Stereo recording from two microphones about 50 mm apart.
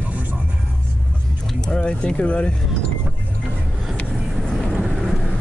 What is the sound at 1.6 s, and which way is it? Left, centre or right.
Speech, left.